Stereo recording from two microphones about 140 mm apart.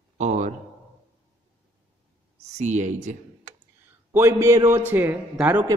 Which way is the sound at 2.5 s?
55° right (ahead or behind).